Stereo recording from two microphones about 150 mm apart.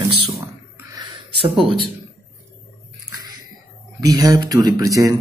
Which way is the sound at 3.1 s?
25° right (ahead or behind).